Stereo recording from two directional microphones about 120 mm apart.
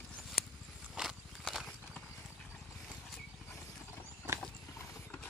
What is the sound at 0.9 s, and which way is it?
Horse, centre (ahead or behind).